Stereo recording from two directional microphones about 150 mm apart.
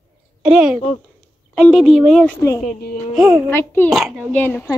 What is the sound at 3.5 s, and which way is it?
Speech, 15° left (ahead or behind).